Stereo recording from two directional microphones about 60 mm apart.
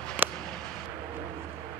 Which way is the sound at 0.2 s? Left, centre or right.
Right.